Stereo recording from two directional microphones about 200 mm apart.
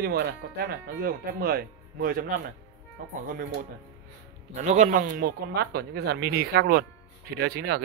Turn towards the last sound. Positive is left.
turn(degrees=-55)  # may be behind; listen again after turning